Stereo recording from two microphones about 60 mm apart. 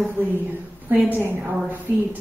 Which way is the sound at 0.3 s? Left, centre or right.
Right.